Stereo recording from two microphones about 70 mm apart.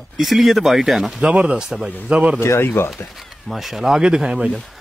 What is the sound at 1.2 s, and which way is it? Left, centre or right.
Speech, centre.